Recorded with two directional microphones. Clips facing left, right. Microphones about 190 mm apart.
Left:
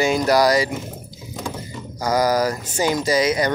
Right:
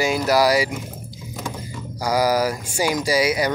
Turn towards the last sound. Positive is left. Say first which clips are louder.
# left 1 dB
turn(degrees=-10)  # may be behind; listen again after turning